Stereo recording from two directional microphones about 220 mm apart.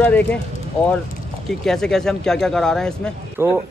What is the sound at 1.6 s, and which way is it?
Speech, centre (ahead or behind).